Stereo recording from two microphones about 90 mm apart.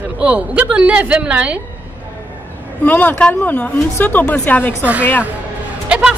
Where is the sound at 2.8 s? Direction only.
20° left (ahead or behind).